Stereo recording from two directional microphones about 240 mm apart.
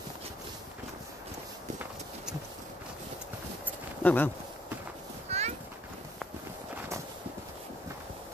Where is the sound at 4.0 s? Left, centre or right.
Centre.